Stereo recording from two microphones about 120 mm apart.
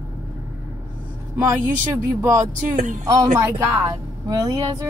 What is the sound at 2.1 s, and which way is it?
Speech, 25° right (ahead or behind).